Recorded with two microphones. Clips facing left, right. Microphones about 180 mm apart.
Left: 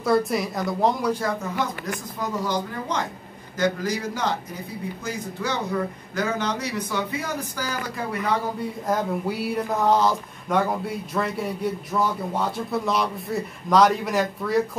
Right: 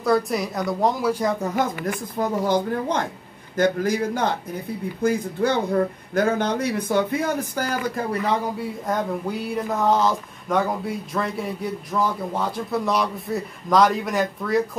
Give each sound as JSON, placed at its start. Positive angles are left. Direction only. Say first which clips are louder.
{"t": 0.0, "sound": "speech", "louder": "even", "side_deg": 0}
{"t": 1.9, "sound": "a man's voice", "louder": "right 5 dB", "side_deg": -55}
{"t": 8.8, "sound": "speech", "louder": "left 1 dB", "side_deg": 5}